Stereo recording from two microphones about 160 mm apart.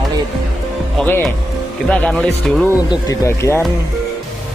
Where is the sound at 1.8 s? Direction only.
5° left (ahead or behind).